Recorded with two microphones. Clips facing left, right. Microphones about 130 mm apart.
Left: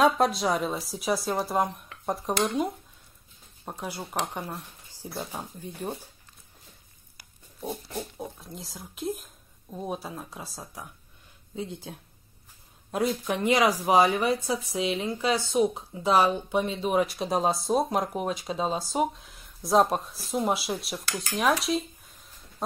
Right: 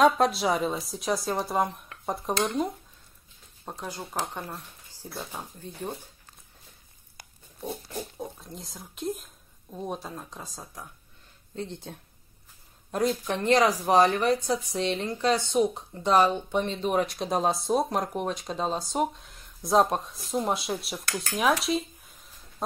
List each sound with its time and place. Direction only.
0.0 s speech: centre (ahead or behind)
8.2 s speech: centre (ahead or behind)
21.4 s a sound: centre (ahead or behind)